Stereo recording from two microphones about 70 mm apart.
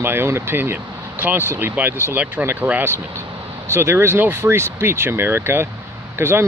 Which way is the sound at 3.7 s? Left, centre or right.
Right.